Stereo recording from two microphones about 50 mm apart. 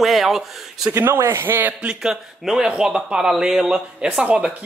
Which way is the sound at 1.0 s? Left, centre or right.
Right.